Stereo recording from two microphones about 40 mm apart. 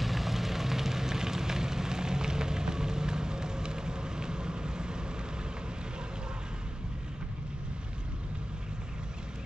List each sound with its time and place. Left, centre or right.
0.0 s vehicle: centre